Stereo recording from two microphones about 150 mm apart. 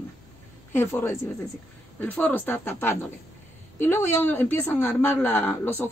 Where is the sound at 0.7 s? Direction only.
15° left (ahead or behind).